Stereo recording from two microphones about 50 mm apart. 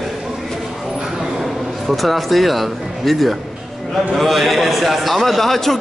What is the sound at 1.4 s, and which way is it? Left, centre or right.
A man's voice, centre.